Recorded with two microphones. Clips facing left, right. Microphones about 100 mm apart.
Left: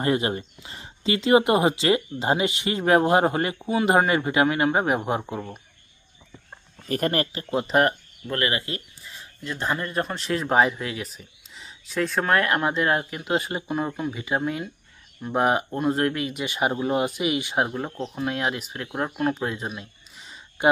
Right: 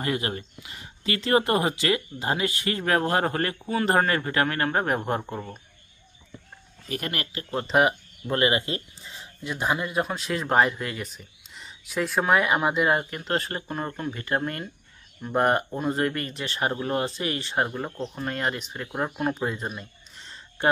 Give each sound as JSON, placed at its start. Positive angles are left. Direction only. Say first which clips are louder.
{"t": 0.0, "sound": "speech", "louder": "left 5 dB", "side_deg": 25}
{"t": 6.9, "sound": "speech", "louder": "left 7 dB", "side_deg": 40}
{"t": 7.7, "sound": "speech", "louder": "even", "side_deg": 0}
{"t": 8.3, "sound": "speech", "louder": "right 3 dB", "side_deg": -25}